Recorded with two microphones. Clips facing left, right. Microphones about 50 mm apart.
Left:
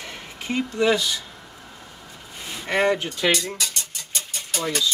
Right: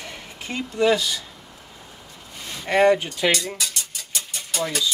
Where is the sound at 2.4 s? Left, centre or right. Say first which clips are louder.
Right 4 dB; centre.